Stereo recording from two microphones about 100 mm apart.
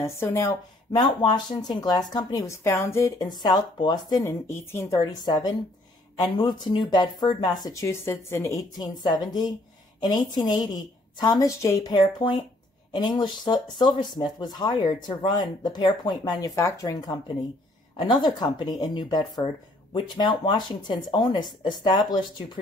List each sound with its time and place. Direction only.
0.0 s a woman's voice: 30° left (ahead or behind)
0.9 s speech: 45° left (ahead or behind)
2.5 s a woman's voice: 30° left (ahead or behind)
3.2 s speech: 40° left (ahead or behind)
4.2 s a woman's voice: 25° left (ahead or behind)
4.9 s speech: 45° left (ahead or behind)
7.8 s a woman's voice: 25° left (ahead or behind)
8.7 s speech: 45° left (ahead or behind)
11.9 s speech: 50° left (ahead or behind)